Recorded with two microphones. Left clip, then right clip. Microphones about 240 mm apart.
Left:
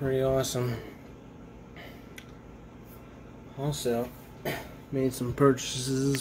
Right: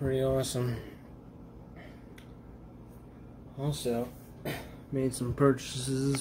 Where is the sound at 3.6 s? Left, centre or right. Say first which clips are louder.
Left 3 dB; centre.